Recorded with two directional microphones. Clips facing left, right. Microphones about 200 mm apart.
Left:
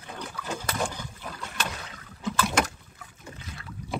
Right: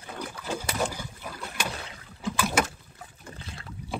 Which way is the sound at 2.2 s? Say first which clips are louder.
Even; 10° right (ahead or behind).